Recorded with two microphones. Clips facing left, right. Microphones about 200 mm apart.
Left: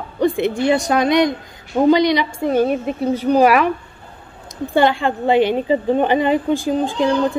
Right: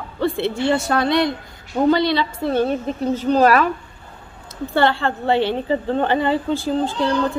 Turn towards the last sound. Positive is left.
turn(degrees=15)  # may be behind; listen again after turning